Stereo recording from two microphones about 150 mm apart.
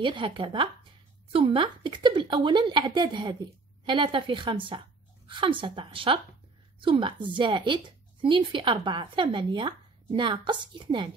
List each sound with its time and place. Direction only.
0.0 s a woman's voice: 30° right (ahead or behind)